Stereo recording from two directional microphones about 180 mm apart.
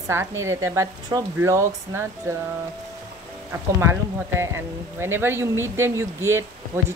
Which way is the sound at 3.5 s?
15° right (ahead or behind).